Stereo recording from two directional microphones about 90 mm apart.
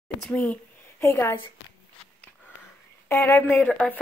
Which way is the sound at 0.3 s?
15° left (ahead or behind).